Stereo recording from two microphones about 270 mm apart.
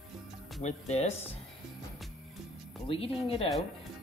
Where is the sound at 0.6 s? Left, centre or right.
Left.